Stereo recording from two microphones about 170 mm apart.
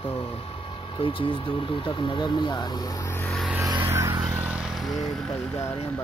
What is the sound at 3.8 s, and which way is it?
Vehicle, 15° right (ahead or behind).